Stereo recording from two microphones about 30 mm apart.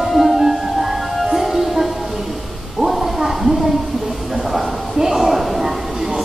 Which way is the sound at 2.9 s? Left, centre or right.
Centre.